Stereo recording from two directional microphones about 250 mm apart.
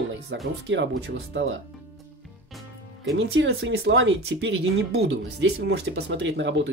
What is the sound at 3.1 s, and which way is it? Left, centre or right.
Speech, right.